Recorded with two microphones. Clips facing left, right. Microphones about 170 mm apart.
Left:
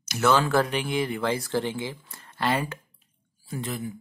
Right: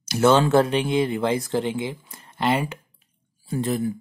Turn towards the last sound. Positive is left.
turn(degrees=-40)  # may be behind; listen again after turning